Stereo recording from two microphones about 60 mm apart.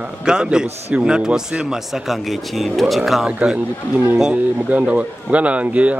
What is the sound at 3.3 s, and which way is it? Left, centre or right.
A man's voice, centre.